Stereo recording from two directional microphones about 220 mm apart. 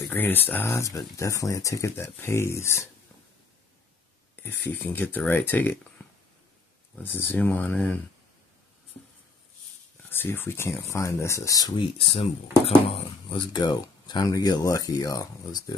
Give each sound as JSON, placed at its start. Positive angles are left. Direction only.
{"t": 0.1, "sound": "speech", "side_deg": 10}
{"t": 4.4, "sound": "speech", "side_deg": 10}
{"t": 7.0, "sound": "speech", "side_deg": 10}
{"t": 10.0, "sound": "speech", "side_deg": 10}